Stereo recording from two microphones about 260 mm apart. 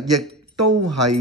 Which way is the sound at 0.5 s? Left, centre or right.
Right.